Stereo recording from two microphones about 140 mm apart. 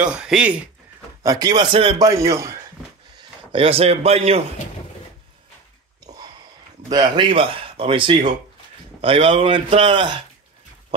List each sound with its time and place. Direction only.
0.0 s speech: 5° right (ahead or behind)
1.2 s speech: 25° right (ahead or behind)
2.0 s speech: 25° right (ahead or behind)
3.2 s speech: 40° right (ahead or behind)
6.9 s speech: 30° right (ahead or behind)